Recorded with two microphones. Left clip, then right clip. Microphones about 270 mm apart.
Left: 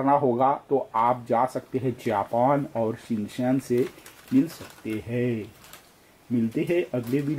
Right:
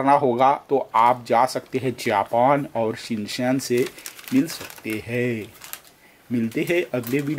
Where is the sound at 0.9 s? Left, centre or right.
Centre.